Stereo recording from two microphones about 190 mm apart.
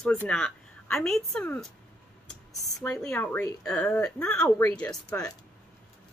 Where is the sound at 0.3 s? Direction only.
5° left (ahead or behind).